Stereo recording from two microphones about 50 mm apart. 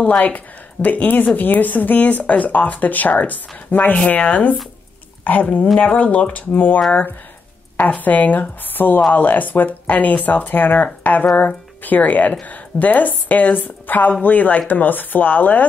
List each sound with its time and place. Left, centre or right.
0.0 s speech: left